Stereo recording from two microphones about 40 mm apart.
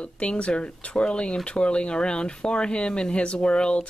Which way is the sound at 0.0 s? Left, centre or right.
Left.